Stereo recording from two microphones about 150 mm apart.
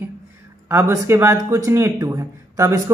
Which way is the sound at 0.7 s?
15° right (ahead or behind).